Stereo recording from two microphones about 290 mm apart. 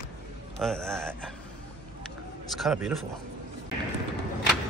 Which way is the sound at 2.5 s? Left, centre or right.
Centre.